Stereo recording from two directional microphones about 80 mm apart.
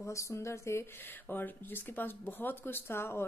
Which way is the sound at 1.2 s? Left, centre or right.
Left.